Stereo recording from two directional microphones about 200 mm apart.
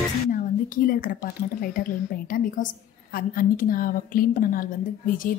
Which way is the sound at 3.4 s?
45° left (ahead or behind).